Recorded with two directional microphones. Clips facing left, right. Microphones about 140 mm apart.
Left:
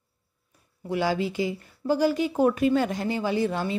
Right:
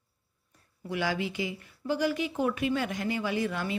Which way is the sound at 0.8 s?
30° left (ahead or behind).